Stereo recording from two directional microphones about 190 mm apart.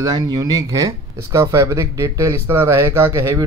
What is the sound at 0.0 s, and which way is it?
Speech, 20° right (ahead or behind).